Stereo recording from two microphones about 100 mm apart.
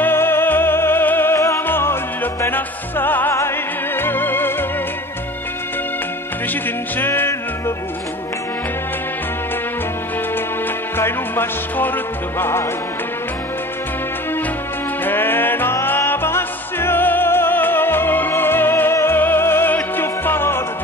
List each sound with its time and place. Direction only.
0.0 s music: 25° left (ahead or behind)
6.5 s music: 20° left (ahead or behind)
11.0 s music: 20° left (ahead or behind)
15.0 s music: 20° left (ahead or behind)